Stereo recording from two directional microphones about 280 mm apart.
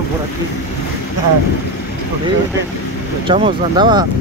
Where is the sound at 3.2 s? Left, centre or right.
Centre.